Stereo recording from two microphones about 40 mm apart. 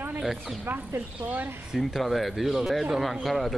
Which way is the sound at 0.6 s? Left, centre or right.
Right.